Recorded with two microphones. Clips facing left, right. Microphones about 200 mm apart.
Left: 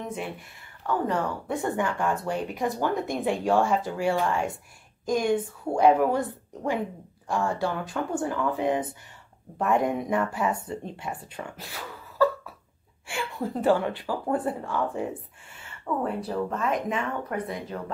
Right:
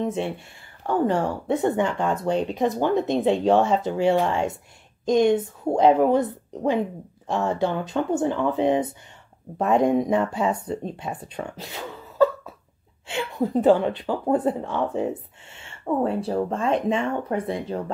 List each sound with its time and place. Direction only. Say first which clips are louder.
0.0 s speech: right 8 dB; 25° right (ahead or behind)
11.3 s a sound: right 5 dB; 20° right (ahead or behind)
13.3 s speech: right 5 dB; 20° right (ahead or behind)